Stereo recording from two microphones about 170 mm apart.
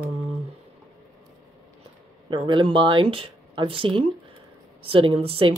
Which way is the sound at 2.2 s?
30° right (ahead or behind).